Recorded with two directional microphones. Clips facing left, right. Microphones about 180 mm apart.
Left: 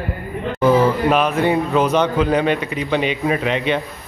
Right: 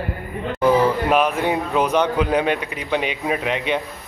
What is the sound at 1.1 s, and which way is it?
A man's voice, 10° right (ahead or behind).